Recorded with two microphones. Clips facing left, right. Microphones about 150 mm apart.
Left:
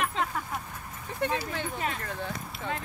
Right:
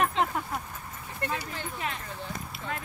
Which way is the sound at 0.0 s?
30° right (ahead or behind).